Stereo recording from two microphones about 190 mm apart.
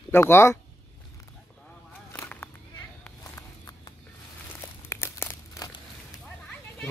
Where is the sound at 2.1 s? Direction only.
10° left (ahead or behind).